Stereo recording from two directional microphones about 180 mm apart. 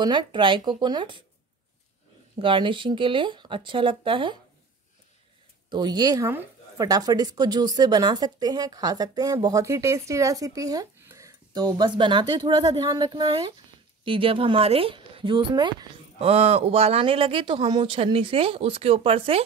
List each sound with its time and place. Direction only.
0.0 s a woman's voice: 25° right (ahead or behind)
2.3 s a woman's voice: 30° right (ahead or behind)
5.7 s a woman's voice: 25° right (ahead or behind)